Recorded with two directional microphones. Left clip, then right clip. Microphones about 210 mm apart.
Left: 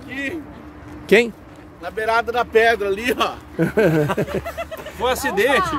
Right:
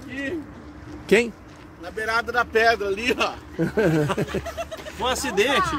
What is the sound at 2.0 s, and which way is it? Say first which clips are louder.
Speech: left 4 dB; 40° left (ahead or behind).